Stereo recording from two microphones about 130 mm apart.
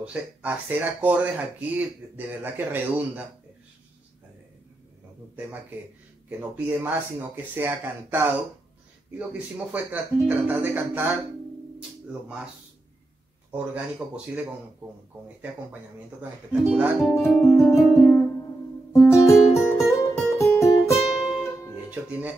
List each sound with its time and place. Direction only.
0.0 s speech: 10° right (ahead or behind)
6.2 s speech: 15° right (ahead or behind)
10.2 s speech: 15° right (ahead or behind)
12.1 s speech: 5° right (ahead or behind)
13.5 s speech: 10° right (ahead or behind)
16.2 s speech: 10° right (ahead or behind)
17.0 s speech: 5° left (ahead or behind)
17.8 s music: 10° left (ahead or behind)
18.9 s music: 25° left (ahead or behind)
20.9 s music: 5° right (ahead or behind)